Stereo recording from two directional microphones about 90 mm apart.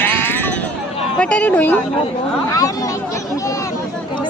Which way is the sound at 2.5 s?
40° left (ahead or behind).